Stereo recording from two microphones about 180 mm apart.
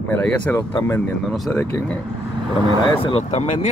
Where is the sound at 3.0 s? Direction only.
35° left (ahead or behind).